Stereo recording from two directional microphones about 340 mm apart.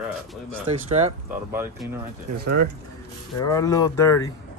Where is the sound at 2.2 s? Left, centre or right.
Right.